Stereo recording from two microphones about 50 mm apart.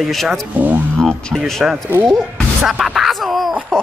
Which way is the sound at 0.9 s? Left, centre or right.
Centre.